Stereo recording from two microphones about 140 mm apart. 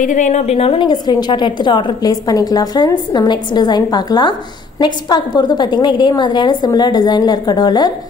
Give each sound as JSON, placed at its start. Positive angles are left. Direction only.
{"t": 0.0, "sound": "a woman's voice", "side_deg": 65}